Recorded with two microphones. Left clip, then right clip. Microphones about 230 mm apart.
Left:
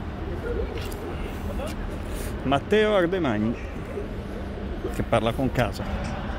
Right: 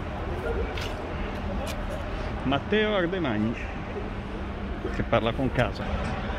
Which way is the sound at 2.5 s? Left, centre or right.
Left.